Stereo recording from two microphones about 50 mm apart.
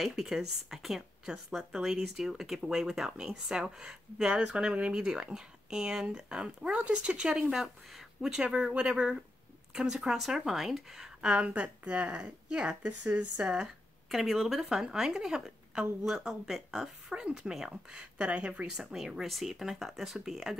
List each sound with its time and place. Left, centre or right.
0.0 s speech: centre
7.2 s speech: centre
8.5 s speech: right
9.8 s speech: centre
11.3 s speech: right
14.1 s speech: centre
18.1 s speech: right
18.7 s speech: centre